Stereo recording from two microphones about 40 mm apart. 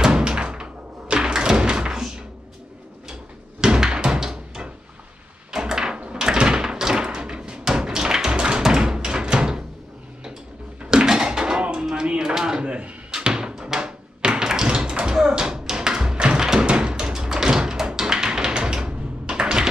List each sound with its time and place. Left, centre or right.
0.0 s thunk: centre
3.6 s a sound: right
6.1 s door: right
10.9 s a sound: centre
15.1 s tap: centre
16.3 s thump: centre
16.6 s music: centre